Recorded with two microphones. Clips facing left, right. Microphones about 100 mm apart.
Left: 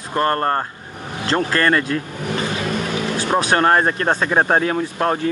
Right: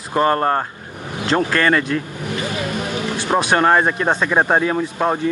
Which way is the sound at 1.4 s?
35° left (ahead or behind).